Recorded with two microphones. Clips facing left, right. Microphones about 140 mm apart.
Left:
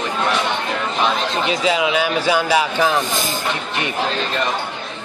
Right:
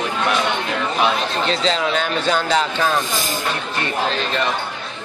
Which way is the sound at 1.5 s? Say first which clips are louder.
Left 2 dB; 10° left (ahead or behind).